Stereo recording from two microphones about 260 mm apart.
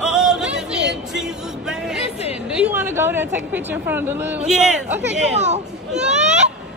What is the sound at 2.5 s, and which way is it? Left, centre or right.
A woman's voice, centre.